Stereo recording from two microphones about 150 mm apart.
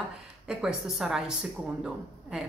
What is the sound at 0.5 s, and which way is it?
Speech, 5° right (ahead or behind).